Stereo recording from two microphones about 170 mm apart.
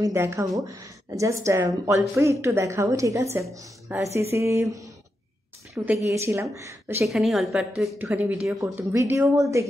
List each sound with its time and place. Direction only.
0.0 s speech: 15° right (ahead or behind)
7.1 s a woman's voice: centre (ahead or behind); by 9.7 s 15° right (ahead or behind)